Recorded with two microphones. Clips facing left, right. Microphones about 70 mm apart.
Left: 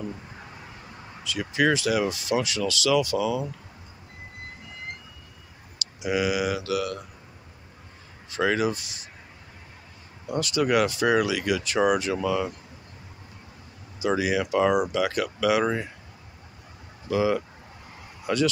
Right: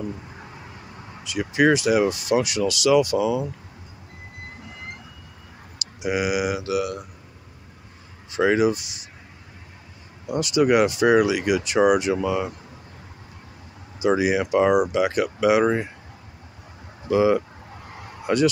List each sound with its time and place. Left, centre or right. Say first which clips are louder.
1.2 s speech: right 4 dB; centre
6.0 s speech: right 2 dB; centre
8.3 s speech: right 5 dB; centre
10.2 s speech: right 5 dB; centre
14.0 s speech: right 4 dB; right
17.1 s speech: right 5 dB; right